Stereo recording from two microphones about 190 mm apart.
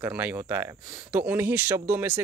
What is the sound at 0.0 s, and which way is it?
Speech, 10° right (ahead or behind).